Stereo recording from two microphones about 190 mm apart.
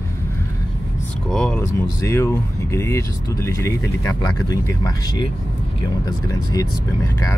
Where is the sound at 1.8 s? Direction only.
15° left (ahead or behind).